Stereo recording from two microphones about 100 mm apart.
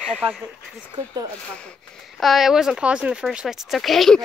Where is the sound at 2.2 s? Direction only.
Centre (ahead or behind).